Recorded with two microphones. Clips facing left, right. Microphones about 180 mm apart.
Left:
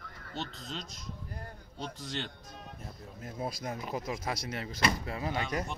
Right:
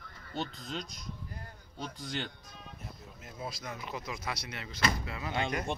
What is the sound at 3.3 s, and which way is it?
Speech, 40° left (ahead or behind).